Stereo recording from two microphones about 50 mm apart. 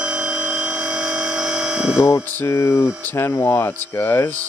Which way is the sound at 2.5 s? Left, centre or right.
Left.